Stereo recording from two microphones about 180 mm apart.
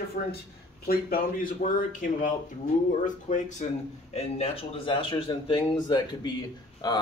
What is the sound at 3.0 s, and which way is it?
Speech, 45° left (ahead or behind).